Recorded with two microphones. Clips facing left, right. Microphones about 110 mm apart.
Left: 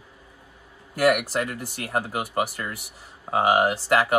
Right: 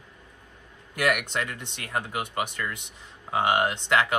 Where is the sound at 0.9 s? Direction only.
35° left (ahead or behind).